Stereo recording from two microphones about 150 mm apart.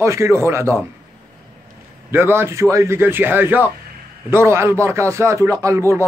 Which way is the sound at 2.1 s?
15° right (ahead or behind).